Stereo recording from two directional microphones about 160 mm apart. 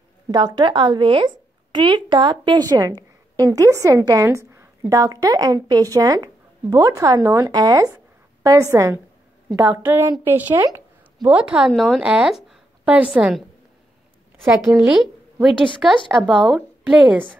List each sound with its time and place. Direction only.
0.3 s a woman's voice: 25° right (ahead or behind); by 13.5 s 5° right (ahead or behind)
14.6 s a woman's voice: 5° right (ahead or behind)